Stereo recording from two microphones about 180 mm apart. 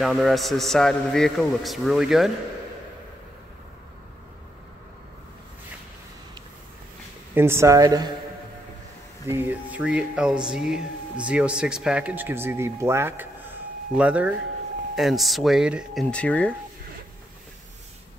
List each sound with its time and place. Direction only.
0.0 s a man's voice: centre (ahead or behind)
7.3 s speech: 15° right (ahead or behind)
9.2 s a man's voice: 10° right (ahead or behind); by 16.5 s 5° left (ahead or behind)